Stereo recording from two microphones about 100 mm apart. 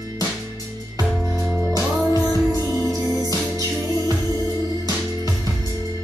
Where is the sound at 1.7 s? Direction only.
35° left (ahead or behind).